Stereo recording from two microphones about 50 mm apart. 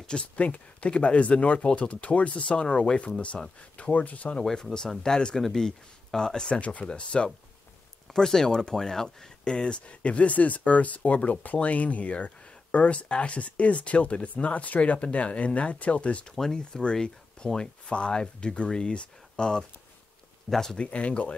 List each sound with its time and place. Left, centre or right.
0.0 s speech: centre
4.4 s speech: centre
16.3 s speech: centre
20.4 s speech: centre
20.7 s speech: left